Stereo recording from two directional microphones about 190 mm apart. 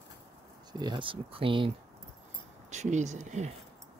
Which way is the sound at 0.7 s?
25° right (ahead or behind).